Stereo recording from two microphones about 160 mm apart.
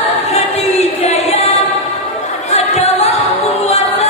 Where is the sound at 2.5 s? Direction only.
45° left (ahead or behind).